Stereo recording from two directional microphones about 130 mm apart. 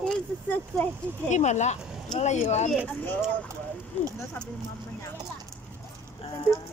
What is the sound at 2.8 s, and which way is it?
Speech, 10° left (ahead or behind).